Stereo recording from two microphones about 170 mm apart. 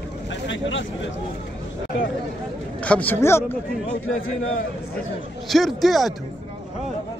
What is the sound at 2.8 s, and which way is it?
Speech, 10° left (ahead or behind).